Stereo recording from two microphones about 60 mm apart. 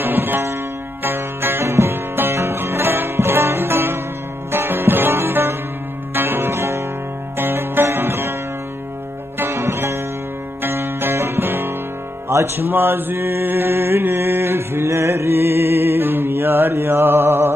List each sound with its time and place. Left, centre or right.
0.0 s music: right
9.4 s music: right
12.3 s mantra: right